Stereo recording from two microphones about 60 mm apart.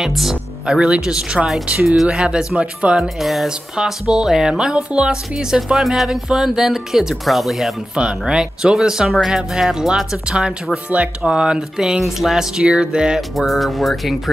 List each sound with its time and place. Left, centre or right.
0.0 s music: centre
0.7 s speech: centre
3.0 s speech: centre
7.9 s speech: centre
13.4 s speech: centre